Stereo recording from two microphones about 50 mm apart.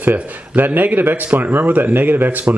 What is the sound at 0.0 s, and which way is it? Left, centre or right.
Speech, right.